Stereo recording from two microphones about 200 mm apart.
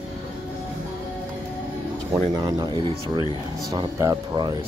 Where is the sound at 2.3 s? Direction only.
20° right (ahead or behind).